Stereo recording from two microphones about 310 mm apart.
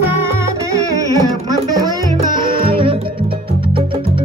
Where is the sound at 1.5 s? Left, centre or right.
Centre.